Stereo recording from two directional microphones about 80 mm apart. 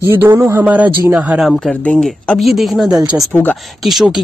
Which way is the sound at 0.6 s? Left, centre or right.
Centre.